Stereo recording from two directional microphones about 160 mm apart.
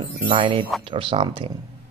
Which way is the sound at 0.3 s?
35° right (ahead or behind).